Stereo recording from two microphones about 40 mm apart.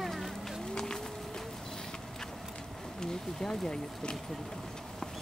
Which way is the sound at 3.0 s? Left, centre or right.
Centre.